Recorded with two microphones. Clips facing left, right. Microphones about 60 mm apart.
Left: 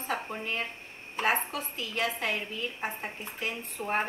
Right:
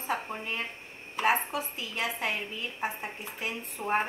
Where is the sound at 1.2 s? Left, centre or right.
Centre.